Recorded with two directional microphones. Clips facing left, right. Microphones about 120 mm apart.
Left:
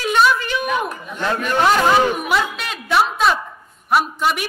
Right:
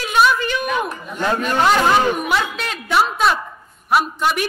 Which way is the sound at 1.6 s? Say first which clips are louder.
Left 1 dB; centre (ahead or behind).